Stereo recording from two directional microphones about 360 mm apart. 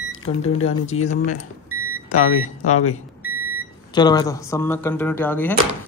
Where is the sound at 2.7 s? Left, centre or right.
Left.